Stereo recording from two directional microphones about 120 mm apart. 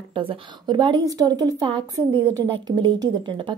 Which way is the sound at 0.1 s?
50° right (ahead or behind).